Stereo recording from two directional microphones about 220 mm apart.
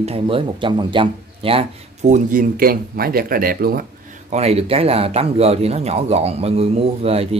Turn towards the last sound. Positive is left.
turn(degrees=-25)  # may be behind; listen again after turning